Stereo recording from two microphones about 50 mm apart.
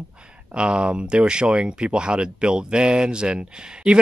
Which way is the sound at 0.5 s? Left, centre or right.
Right.